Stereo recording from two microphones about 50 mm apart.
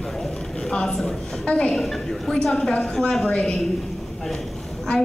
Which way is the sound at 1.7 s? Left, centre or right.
Centre.